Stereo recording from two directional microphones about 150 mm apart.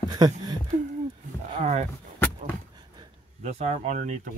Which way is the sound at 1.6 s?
50° right (ahead or behind).